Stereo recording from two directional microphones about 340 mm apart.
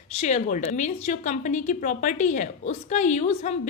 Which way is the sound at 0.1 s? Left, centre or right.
Centre.